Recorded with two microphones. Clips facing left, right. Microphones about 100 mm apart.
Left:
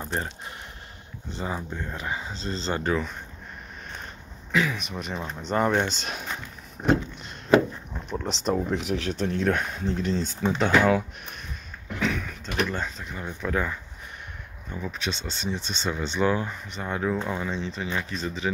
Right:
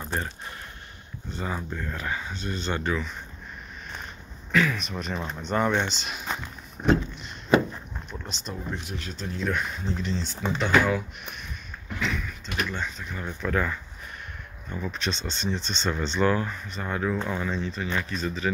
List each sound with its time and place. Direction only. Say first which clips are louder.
0.0 s a sound: left 1 dB; 25° left (ahead or behind)
1.3 s speech: even; 25° left (ahead or behind)
4.5 s speech: right 1 dB; 20° left (ahead or behind)
5.5 s speech: left 1 dB; 35° left (ahead or behind)
6.8 s speech: even; 35° left (ahead or behind)
8.1 s speech: left 12 dB; 85° left; by 11.0 s 50° left (ahead or behind)
12.0 s a sound: left 3 dB; 55° left (ahead or behind)
12.6 s speech: left 2 dB; 35° left (ahead or behind)
13.0 s speech: even; 20° left (ahead or behind)